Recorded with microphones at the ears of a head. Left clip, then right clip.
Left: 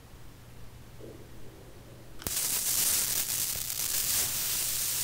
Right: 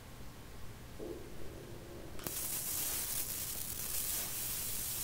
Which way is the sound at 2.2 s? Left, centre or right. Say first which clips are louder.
Left 11 dB; left.